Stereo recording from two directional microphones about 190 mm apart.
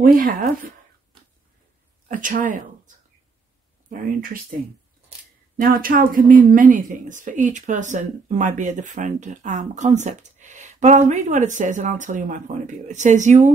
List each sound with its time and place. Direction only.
0.0 s speech: 45° right (ahead or behind)
2.0 s speech: 45° right (ahead or behind)
3.9 s speech: 45° right (ahead or behind)
5.6 s a woman's voice: 50° right (ahead or behind)